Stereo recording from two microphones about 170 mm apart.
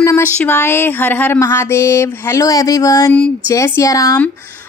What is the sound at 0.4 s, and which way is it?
Speech, 10° left (ahead or behind).